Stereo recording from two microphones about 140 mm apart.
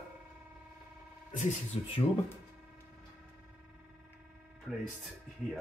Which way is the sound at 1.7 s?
45° left (ahead or behind).